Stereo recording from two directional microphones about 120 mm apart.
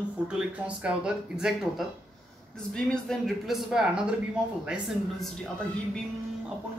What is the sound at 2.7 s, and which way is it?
Speech, 5° left (ahead or behind).